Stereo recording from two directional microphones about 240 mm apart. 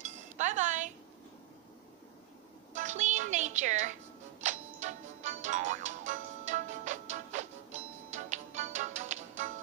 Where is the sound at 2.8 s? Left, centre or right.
Right.